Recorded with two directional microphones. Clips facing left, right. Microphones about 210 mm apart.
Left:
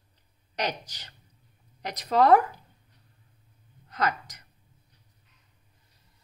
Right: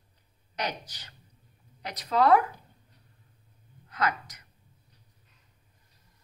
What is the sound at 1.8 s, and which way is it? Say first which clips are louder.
Speech: left 2 dB; 40° left (ahead or behind).